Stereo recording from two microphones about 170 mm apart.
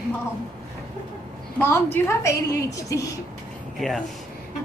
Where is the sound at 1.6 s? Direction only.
15° left (ahead or behind).